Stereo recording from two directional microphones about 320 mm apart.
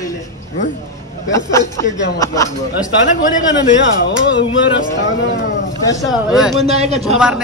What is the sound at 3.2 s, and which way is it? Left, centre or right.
Speech, left.